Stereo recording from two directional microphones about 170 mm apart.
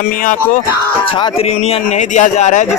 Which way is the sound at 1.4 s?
40° left (ahead or behind).